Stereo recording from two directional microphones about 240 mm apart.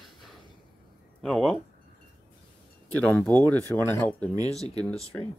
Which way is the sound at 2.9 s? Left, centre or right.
Centre.